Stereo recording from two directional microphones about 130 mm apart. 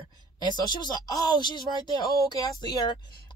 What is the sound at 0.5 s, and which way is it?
Speech, 35° left (ahead or behind).